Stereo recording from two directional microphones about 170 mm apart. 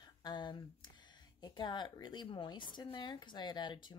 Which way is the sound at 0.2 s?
25° left (ahead or behind).